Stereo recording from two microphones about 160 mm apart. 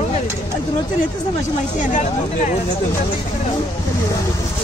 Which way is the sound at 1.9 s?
50° left (ahead or behind).